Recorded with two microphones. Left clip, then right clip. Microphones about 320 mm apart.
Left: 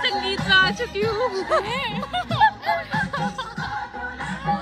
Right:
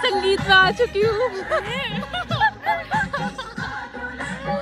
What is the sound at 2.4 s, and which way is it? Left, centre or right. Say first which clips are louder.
Music: left 2 dB; left.